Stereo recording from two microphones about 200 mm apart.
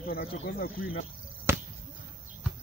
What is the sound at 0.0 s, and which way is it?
Speech, 50° left (ahead or behind).